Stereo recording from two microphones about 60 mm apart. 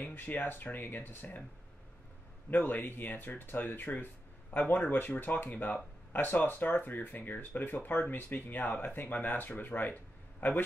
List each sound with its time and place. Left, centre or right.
0.0 s speech: left
2.5 s speech: left